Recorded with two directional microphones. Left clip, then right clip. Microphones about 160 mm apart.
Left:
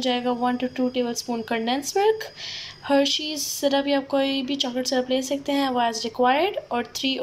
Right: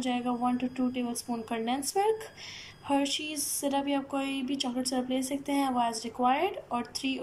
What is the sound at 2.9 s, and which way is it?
A woman's voice, centre (ahead or behind).